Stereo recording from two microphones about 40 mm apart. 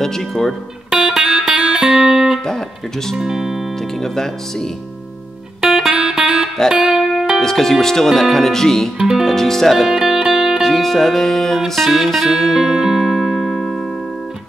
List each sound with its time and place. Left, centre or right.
0.3 s speech: centre
0.9 s music: right
3.2 s speech: centre
4.0 s speech: centre
5.7 s music: centre
7.3 s speech: centre
8.9 s speech: centre
9.2 s speech: centre
9.8 s speech: centre
10.1 s music: centre
10.6 s music: centre